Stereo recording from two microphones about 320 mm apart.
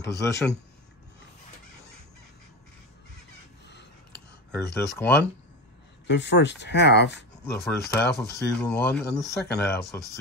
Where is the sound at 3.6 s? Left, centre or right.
Left.